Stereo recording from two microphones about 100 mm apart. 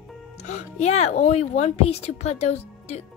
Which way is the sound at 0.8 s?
90° left.